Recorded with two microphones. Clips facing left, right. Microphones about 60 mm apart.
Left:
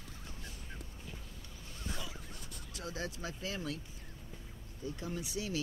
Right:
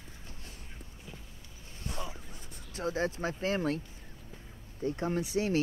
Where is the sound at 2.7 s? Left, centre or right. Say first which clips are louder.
Right 10 dB; right.